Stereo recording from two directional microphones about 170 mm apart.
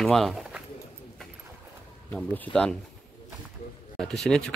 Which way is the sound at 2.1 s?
10° left (ahead or behind).